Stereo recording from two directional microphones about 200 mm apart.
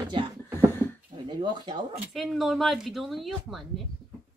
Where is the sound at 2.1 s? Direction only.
Centre (ahead or behind).